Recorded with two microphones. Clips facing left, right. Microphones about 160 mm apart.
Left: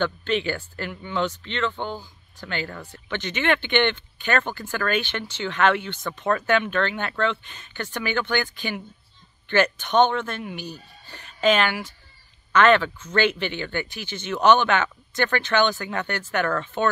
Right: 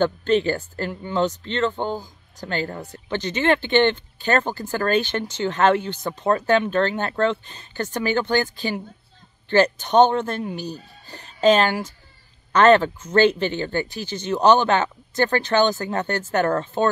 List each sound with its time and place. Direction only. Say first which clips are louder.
0.0 s speech: right 5 dB; 40° right (ahead or behind)